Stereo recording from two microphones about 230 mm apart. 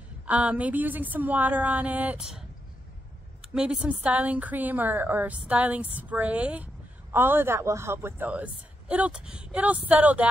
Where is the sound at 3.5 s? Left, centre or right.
Centre.